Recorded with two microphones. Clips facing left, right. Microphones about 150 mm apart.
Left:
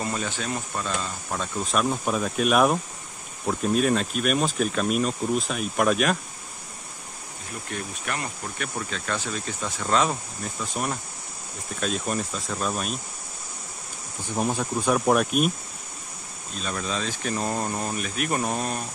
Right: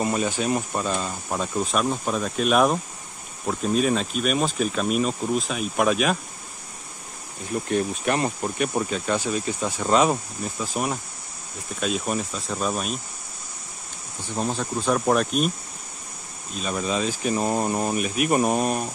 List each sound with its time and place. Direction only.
0.0 s speech: 15° right (ahead or behind)
1.6 s speech: centre (ahead or behind)
7.7 s speech: 25° right (ahead or behind)
8.9 s speech: 15° right (ahead or behind)
14.2 s speech: 15° left (ahead or behind)
16.6 s speech: 10° right (ahead or behind)